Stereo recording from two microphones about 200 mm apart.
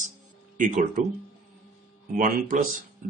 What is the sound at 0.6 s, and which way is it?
Speech, 40° right (ahead or behind).